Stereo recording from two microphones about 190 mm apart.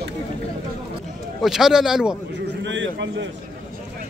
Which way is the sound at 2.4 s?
70° right (ahead or behind).